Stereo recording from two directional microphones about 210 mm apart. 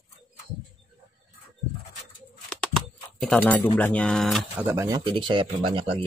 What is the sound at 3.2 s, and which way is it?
Speech, 5° left (ahead or behind).